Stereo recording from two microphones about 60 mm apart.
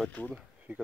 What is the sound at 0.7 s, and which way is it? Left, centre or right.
Speech, right.